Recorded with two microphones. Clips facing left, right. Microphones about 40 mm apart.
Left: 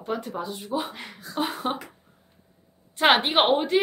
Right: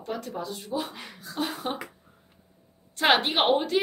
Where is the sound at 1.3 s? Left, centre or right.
Left.